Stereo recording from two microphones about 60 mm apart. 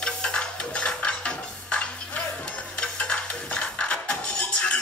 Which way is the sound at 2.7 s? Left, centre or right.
Centre.